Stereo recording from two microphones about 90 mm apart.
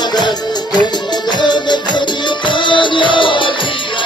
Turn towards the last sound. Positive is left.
turn(degrees=65)  # may be behind; listen again after turning